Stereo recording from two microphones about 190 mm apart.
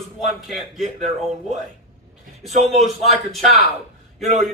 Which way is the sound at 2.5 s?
35° right (ahead or behind).